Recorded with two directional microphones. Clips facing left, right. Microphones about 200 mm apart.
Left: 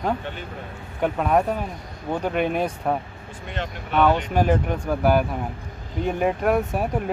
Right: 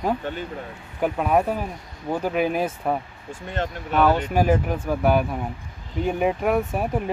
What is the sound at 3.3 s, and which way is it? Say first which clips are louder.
Speech: right 3 dB; 45° right (ahead or behind).